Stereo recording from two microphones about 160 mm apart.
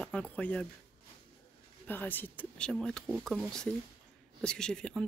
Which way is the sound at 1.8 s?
10° left (ahead or behind).